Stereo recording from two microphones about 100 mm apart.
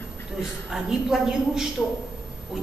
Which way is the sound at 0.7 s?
5° right (ahead or behind).